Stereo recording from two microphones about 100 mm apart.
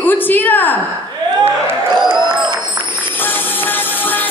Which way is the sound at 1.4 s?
20° right (ahead or behind).